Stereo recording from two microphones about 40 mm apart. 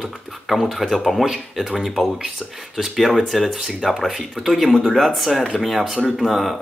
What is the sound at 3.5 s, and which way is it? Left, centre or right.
Speech, centre.